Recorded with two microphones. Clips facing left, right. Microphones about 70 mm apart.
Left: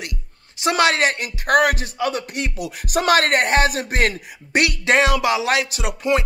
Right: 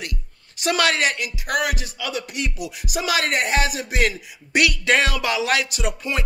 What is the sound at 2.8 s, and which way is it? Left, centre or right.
Speech, left.